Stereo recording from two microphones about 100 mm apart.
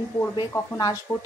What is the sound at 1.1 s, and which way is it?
Speech, 15° left (ahead or behind).